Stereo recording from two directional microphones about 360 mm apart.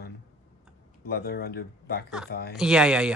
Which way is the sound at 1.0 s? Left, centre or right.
Left.